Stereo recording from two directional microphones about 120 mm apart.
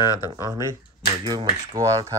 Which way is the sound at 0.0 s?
30° left (ahead or behind).